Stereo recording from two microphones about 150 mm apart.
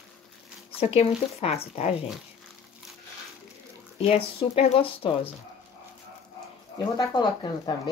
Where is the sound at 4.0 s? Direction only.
40° left (ahead or behind).